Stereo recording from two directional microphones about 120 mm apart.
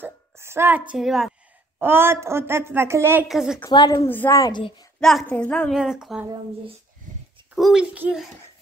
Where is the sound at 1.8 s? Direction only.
20° right (ahead or behind).